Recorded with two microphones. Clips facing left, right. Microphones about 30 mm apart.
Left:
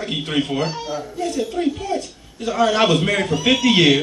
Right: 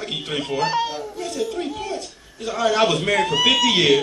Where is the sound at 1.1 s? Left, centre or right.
Left.